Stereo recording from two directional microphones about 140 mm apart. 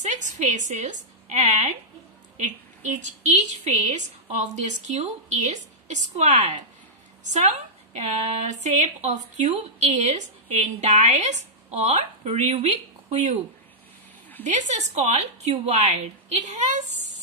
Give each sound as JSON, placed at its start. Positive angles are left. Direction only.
{"t": 0.0, "sound": "a woman's voice", "side_deg": -65}
{"t": 3.0, "sound": "a woman's voice", "side_deg": -55}
{"t": 11.8, "sound": "speech", "side_deg": -50}
{"t": 14.4, "sound": "a woman's voice", "side_deg": -60}